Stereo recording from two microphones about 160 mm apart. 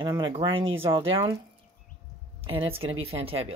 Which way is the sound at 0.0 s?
25° right (ahead or behind).